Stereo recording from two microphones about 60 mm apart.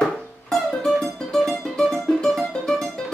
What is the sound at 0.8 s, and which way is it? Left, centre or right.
Music, centre.